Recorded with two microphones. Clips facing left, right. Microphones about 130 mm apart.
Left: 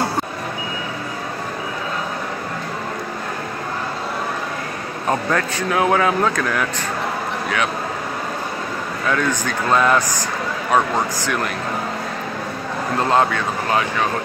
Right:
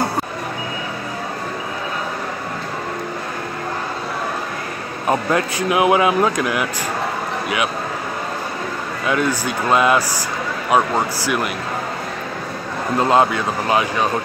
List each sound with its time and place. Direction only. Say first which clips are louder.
5.0 s speech: right 2 dB; 15° right (ahead or behind)
9.0 s speech: right 1 dB; 10° right (ahead or behind)
13.1 s speech: right 2 dB; 15° right (ahead or behind)